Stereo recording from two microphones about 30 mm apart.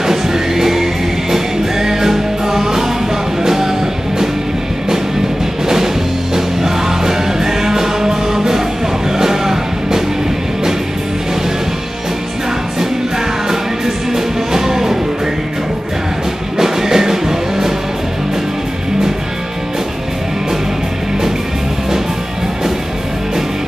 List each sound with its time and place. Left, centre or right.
0.0 s music: centre
6.3 s music: centre
13.5 s music: centre
16.5 s music: centre